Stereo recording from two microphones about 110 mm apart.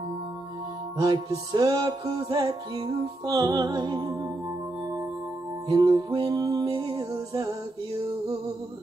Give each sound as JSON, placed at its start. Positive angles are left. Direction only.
{"t": 0.9, "sound": "music", "side_deg": -45}